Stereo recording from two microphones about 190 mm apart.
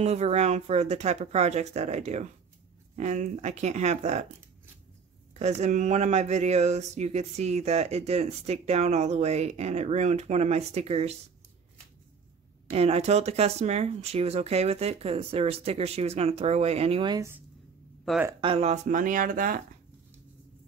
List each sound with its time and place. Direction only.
0.0 s speech: 35° right (ahead or behind)
5.3 s speech: 35° right (ahead or behind)
12.6 s speech: 35° right (ahead or behind)
18.1 s speech: centre (ahead or behind)
18.4 s speech: 30° right (ahead or behind)